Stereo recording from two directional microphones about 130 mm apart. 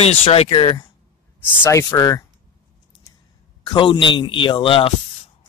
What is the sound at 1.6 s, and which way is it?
Speech, 20° left (ahead or behind).